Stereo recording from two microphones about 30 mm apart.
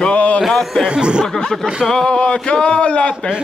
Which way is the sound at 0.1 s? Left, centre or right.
Left.